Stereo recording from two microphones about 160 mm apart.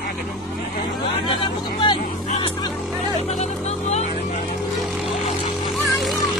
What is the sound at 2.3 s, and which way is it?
Music, 30° left (ahead or behind).